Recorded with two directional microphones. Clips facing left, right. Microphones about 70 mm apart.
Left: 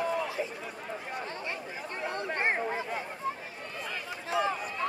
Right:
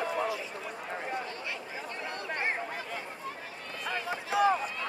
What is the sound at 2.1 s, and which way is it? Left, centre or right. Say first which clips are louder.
Chatter: left 4 dB; left.